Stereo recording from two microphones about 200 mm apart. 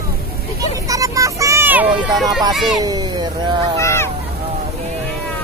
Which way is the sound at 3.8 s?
15° left (ahead or behind).